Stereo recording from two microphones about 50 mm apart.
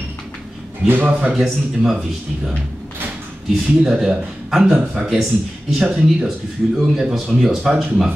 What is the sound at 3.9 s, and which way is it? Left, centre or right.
Speech, centre.